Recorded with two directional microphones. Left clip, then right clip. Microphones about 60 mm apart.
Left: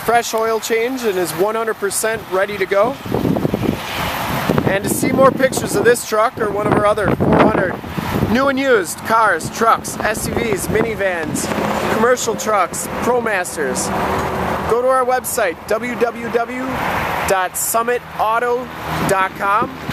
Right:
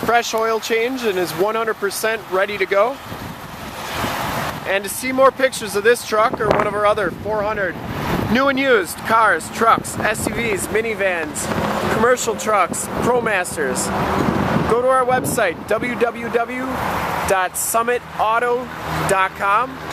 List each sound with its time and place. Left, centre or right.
0.1 s speech: left
4.0 s vehicle: centre
4.7 s speech: left
11.5 s vehicle: left
12.0 s speech: centre
13.9 s speech: left
14.7 s speech: centre
16.6 s speech: left
17.3 s speech: centre